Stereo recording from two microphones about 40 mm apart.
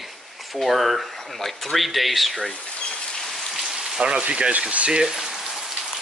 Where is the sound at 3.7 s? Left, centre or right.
Centre.